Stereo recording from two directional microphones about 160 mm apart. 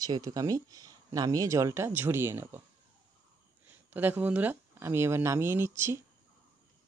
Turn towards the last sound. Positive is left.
turn(degrees=-15)  # may be behind; listen again after turning